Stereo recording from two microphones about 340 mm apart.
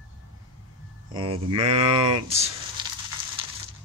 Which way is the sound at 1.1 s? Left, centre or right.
Centre.